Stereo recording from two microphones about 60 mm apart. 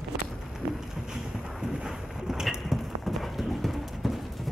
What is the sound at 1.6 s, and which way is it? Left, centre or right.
Clip-clop, centre.